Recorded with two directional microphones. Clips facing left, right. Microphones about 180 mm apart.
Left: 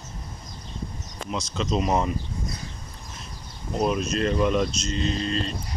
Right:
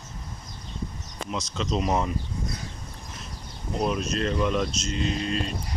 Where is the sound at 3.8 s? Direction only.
5° left (ahead or behind).